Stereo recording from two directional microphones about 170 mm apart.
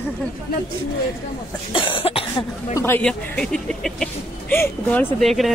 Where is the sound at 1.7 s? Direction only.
30° left (ahead or behind).